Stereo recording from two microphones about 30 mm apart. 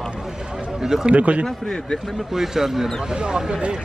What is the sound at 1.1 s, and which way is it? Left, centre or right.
Speech, right.